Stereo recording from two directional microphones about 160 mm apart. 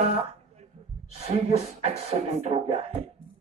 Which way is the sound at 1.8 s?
40° right (ahead or behind).